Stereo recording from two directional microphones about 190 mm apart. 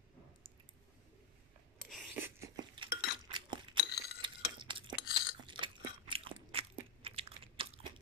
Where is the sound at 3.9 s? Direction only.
60° left (ahead or behind).